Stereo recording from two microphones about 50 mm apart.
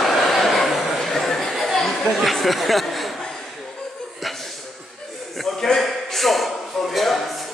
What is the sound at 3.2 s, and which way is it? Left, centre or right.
Chuckle, centre.